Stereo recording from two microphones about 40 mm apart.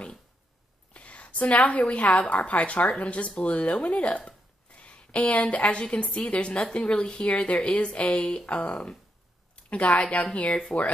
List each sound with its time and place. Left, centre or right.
0.9 s a woman's voice: left